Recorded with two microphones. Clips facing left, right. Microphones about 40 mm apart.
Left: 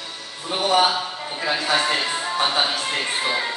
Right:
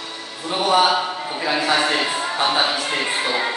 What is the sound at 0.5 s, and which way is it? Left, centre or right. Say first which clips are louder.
A man's voice: right 2 dB; centre.